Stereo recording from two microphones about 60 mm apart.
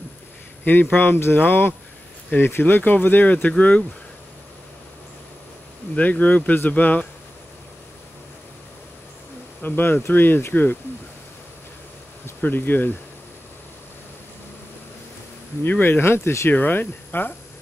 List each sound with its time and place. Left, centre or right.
0.7 s speech: left
5.9 s speech: left
9.6 s speech: left
12.4 s speech: left
15.8 s speech: left
16.5 s speech: left